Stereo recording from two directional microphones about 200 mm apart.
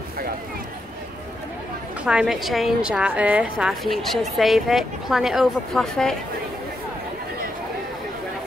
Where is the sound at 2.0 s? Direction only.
5° right (ahead or behind).